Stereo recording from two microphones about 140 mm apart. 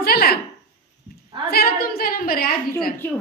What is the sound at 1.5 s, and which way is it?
A woman's voice, 90° left.